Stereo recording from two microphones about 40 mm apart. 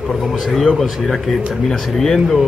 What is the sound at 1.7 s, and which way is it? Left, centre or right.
Speech, centre.